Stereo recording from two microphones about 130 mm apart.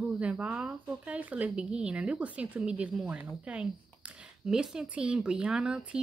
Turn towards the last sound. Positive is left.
turn(degrees=-5)  # may be behind; listen again after turning